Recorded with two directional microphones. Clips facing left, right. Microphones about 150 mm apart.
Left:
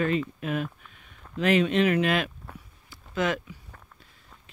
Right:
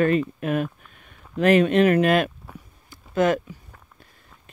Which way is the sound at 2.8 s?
50° right (ahead or behind).